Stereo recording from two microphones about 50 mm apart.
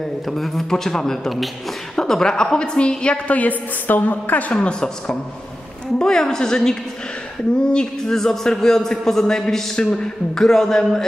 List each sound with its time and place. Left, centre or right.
0.3 s a man's voice: centre
3.3 s a woman's voice: left
4.6 s a man's voice: centre